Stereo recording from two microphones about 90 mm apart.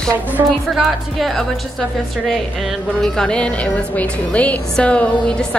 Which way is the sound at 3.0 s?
5° left (ahead or behind).